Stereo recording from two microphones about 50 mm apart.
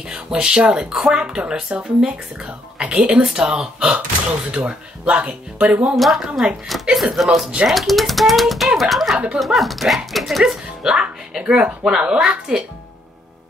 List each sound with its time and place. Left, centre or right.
0.1 s speech: centre; by 5.9 s right
5.9 s speech: centre
10.4 s speech: centre